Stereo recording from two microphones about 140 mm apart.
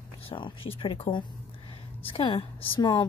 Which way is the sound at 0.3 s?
35° left (ahead or behind).